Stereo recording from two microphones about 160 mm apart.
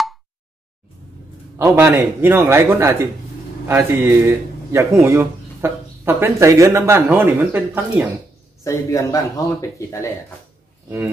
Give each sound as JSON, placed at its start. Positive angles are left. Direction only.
{"t": 1.6, "sound": "a man's voice", "side_deg": -15}
{"t": 8.6, "sound": "speech", "side_deg": 20}